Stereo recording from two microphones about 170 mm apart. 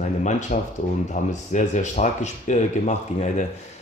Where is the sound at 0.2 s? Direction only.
45° left (ahead or behind).